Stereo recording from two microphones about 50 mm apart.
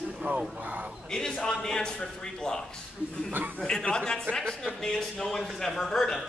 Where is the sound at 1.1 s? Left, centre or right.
Centre.